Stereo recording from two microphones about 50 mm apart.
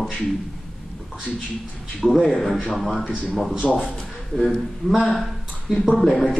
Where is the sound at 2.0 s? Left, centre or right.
Centre.